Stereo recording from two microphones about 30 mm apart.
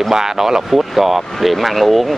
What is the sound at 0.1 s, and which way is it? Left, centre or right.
Speech, centre.